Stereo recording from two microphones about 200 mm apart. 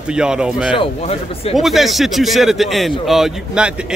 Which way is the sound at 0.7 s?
30° left (ahead or behind).